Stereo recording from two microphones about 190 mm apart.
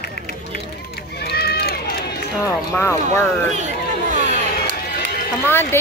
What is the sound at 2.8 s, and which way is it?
Speech, 15° left (ahead or behind).